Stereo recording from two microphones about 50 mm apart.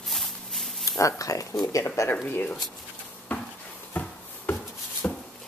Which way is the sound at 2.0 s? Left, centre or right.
Left.